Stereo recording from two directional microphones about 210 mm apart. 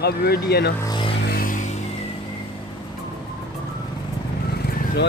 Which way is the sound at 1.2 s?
45° left (ahead or behind).